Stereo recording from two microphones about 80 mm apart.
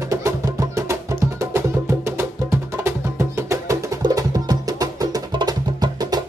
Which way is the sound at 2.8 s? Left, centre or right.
Right.